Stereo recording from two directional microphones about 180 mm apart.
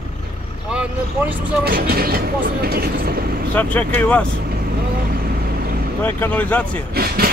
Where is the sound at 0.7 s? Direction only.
5° right (ahead or behind).